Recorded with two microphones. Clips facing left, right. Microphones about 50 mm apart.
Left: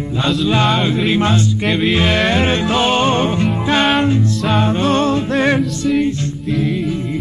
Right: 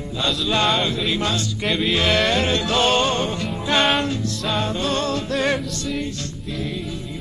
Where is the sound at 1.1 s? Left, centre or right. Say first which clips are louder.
Left 7 dB; left.